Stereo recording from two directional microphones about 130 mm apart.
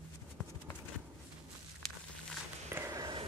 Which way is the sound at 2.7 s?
25° right (ahead or behind).